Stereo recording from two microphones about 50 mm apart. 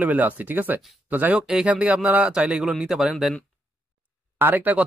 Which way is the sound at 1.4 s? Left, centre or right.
Centre.